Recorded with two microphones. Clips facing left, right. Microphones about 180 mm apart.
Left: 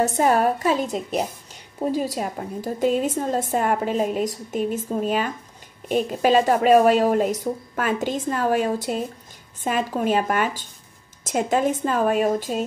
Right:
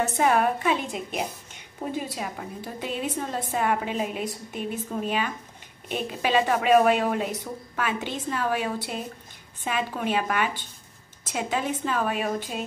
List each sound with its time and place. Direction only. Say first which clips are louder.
0.0 s a woman's voice: left 3 dB; 40° left (ahead or behind)